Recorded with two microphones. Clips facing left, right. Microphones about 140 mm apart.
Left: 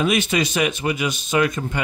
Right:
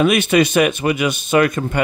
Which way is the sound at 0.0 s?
60° right (ahead or behind).